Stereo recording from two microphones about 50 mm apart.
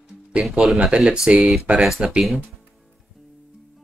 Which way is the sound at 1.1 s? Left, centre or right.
Centre.